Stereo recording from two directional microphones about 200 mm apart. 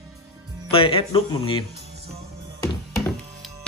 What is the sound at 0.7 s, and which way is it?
Speech, 25° left (ahead or behind).